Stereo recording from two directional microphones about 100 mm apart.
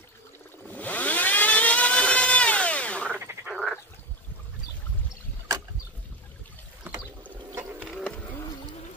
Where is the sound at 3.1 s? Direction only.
20° right (ahead or behind).